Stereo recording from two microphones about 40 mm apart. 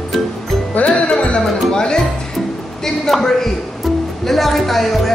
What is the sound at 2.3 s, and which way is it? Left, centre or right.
Music, centre.